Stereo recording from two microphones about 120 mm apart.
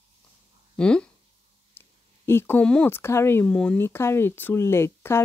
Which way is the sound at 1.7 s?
20° left (ahead or behind).